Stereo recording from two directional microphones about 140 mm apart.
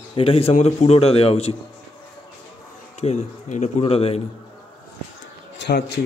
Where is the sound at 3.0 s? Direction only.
50° left (ahead or behind).